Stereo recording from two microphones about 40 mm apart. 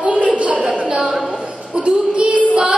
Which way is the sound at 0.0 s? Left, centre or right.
Right.